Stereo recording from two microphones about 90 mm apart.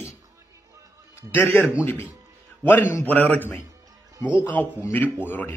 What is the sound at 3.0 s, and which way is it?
Speech, 20° left (ahead or behind).